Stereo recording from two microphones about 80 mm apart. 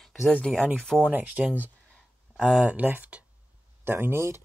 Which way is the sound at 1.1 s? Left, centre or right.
Centre.